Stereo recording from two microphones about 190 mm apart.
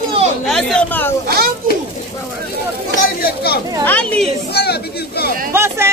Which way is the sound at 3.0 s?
55° left (ahead or behind).